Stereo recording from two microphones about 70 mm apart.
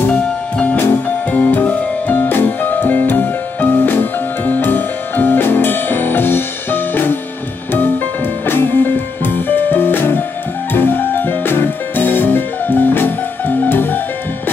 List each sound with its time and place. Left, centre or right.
0.1 s music: centre
8.5 s music: left